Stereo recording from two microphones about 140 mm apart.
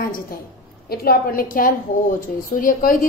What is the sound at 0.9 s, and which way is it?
A woman's voice, 90° left.